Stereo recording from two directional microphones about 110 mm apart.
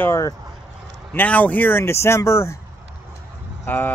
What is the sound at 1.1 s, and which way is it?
Speech, 15° left (ahead or behind).